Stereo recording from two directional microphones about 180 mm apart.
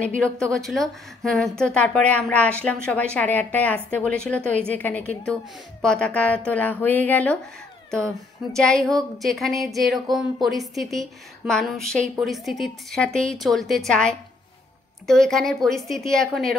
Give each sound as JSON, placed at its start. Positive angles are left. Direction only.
{"t": 0.2, "sound": "a woman's voice", "side_deg": 5}
{"t": 8.5, "sound": "a woman's voice", "side_deg": 5}